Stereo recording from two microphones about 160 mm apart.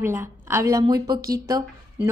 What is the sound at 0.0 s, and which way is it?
A woman's voice, 15° right (ahead or behind).